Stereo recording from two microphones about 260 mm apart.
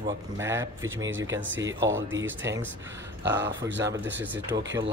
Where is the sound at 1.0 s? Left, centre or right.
Right.